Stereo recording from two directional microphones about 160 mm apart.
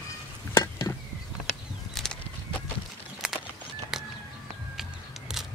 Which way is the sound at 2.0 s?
Centre (ahead or behind).